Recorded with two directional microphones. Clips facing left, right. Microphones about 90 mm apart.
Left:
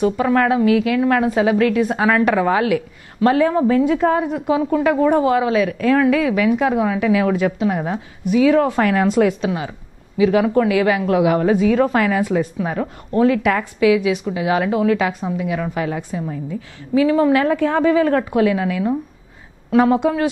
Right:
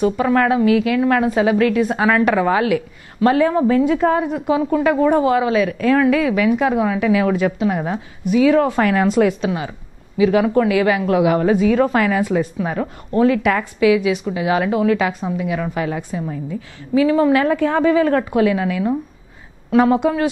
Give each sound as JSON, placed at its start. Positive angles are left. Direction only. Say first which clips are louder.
{"t": 0.0, "sound": "a woman's voice", "louder": "even", "side_deg": -15}